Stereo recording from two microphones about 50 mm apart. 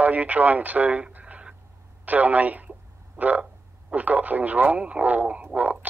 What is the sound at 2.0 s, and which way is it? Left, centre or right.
Radio, right.